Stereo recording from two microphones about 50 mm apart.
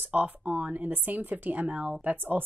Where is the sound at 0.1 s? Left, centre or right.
Right.